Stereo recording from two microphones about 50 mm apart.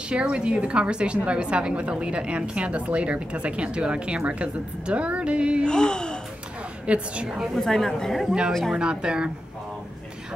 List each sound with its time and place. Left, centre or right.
0.1 s a woman's voice: centre
5.7 s speech: centre
6.9 s a woman's voice: centre
7.5 s a woman's voice: centre
8.3 s a woman's voice: centre